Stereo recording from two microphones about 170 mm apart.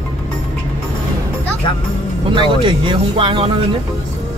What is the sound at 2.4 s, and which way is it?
Speech, 30° right (ahead or behind).